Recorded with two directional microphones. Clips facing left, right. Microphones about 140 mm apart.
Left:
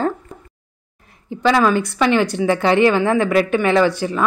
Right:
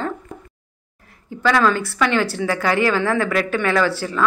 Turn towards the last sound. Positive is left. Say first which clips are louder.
# left 3 dB
turn(degrees=20)  # may be behind; listen again after turning